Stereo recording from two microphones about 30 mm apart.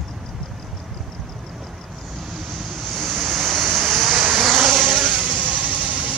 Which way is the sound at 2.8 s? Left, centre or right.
Centre.